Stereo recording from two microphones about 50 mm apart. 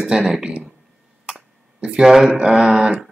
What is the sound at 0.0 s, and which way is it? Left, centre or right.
Speech, centre.